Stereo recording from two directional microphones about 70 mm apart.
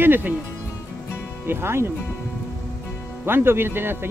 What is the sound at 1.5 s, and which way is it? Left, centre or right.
Speech, right.